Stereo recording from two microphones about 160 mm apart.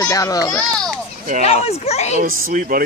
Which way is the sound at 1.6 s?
40° left (ahead or behind).